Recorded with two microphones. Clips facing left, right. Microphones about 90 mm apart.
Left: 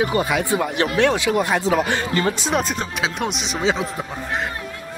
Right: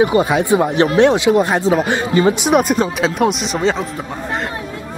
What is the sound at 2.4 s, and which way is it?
Speech, 60° right (ahead or behind).